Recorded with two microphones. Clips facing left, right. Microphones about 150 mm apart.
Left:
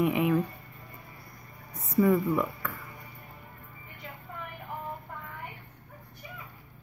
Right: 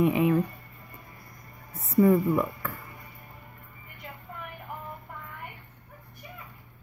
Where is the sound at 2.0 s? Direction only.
20° right (ahead or behind).